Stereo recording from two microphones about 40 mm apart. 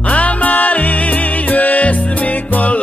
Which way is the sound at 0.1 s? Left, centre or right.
Left.